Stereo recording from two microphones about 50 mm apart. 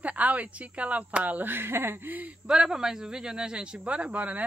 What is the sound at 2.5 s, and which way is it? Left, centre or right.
A man's voice, centre.